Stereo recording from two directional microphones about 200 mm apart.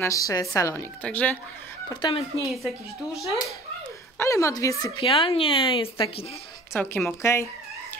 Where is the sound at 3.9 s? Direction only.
15° left (ahead or behind).